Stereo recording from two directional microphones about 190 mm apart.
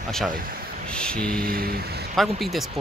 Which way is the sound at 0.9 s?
5° left (ahead or behind).